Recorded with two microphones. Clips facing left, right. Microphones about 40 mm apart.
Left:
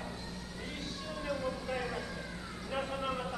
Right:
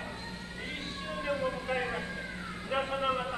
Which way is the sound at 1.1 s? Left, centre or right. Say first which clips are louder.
Right 4 dB; right.